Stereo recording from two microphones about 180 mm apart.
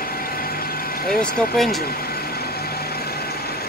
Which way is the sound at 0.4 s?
55° left (ahead or behind).